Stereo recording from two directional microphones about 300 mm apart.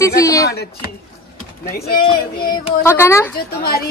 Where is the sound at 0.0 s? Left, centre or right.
Centre.